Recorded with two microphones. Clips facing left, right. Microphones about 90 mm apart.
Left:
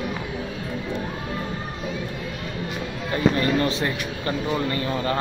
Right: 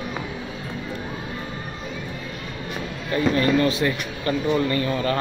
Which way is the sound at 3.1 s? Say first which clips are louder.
Right 1 dB; 25° left (ahead or behind).